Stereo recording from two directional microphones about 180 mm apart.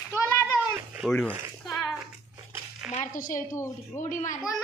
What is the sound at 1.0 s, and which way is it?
Speech, 5° left (ahead or behind).